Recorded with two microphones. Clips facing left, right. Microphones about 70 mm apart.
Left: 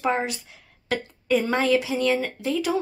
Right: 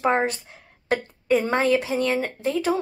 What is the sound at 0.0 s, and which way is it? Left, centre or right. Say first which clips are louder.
Speech: right 3 dB; right.